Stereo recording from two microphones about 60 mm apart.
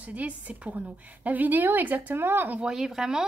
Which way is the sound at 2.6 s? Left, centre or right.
Centre.